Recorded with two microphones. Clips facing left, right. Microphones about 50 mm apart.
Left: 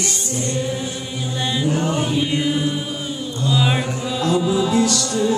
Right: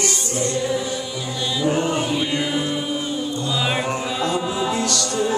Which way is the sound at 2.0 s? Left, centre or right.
Centre.